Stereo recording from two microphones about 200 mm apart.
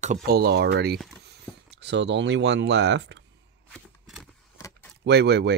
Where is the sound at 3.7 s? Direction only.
Centre (ahead or behind).